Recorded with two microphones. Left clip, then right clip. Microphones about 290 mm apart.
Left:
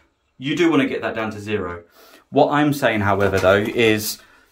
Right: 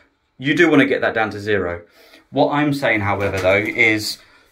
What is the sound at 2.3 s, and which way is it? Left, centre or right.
Speech, left.